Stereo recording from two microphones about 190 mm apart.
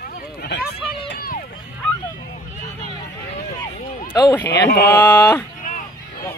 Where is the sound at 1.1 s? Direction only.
50° left (ahead or behind).